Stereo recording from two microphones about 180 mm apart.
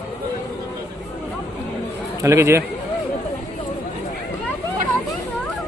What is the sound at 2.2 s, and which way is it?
Speech, 15° right (ahead or behind).